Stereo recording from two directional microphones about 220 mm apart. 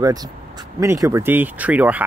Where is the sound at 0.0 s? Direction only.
15° right (ahead or behind).